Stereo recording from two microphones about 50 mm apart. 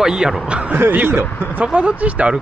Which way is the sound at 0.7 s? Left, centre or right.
Right.